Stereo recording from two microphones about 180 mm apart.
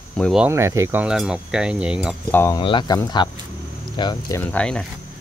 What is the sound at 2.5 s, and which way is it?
Speech, 25° left (ahead or behind).